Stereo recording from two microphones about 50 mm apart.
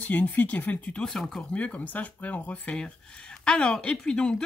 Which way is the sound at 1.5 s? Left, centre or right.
Left.